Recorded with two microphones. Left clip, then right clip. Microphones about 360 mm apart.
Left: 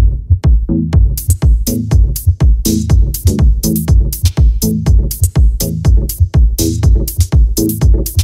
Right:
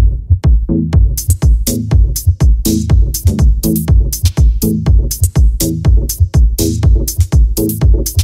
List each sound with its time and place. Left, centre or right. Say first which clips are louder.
0.4 s music: right 1 dB; centre